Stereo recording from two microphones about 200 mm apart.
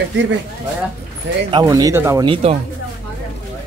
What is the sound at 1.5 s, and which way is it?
Speech, 20° right (ahead or behind).